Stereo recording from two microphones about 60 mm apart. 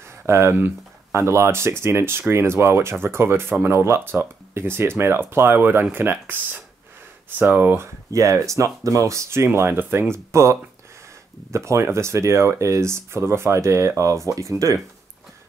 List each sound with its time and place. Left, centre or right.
0.3 s speech: right
8.1 s speech: right